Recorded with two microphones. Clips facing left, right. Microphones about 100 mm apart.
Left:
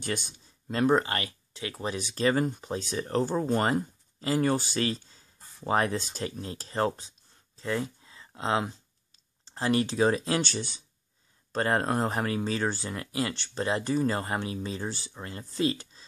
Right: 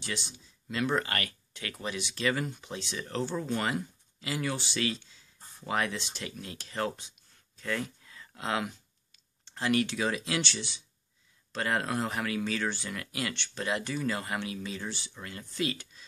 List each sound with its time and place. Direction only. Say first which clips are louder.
0.0 s speech: left 5 dB; 50° left (ahead or behind); by 6.9 s 35° left (ahead or behind)
7.0 s a sound: left 2 dB; 35° left (ahead or behind)
9.5 s speech: left 2 dB; 30° left (ahead or behind)